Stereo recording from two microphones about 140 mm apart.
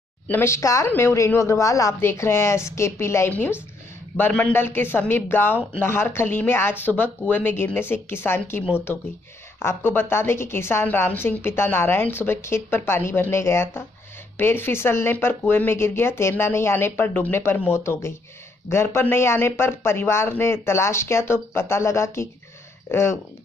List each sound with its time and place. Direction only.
0.3 s a woman's voice: 20° left (ahead or behind)